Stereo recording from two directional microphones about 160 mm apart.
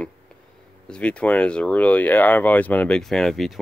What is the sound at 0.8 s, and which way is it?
Speech, 5° left (ahead or behind).